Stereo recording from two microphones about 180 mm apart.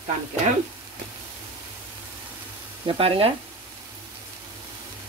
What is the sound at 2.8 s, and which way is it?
Speech, 30° right (ahead or behind).